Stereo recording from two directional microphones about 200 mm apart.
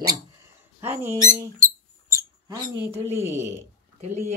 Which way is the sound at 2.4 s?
15° right (ahead or behind).